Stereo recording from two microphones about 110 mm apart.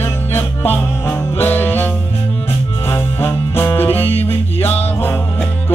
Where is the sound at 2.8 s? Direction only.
20° left (ahead or behind).